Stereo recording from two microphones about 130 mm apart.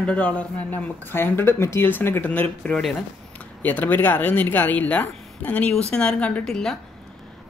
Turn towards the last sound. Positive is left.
turn(degrees=5)  # may be behind; listen again after turning